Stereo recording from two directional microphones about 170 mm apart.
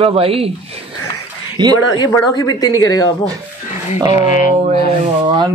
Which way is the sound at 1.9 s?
20° left (ahead or behind).